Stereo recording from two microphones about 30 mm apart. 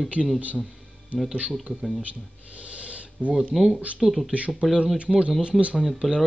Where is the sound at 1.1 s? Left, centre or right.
Right.